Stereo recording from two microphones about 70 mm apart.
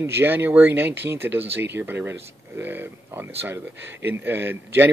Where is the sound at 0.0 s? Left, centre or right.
Right.